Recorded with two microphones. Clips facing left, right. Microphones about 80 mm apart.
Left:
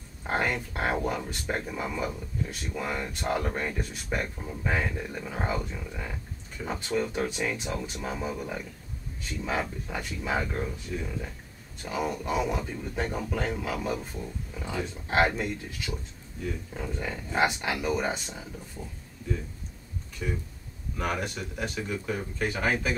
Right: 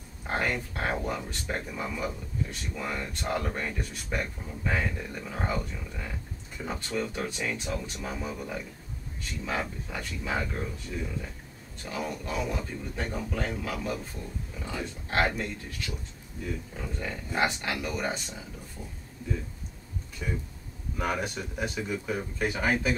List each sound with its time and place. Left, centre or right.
0.2 s speech: centre
20.2 s speech: centre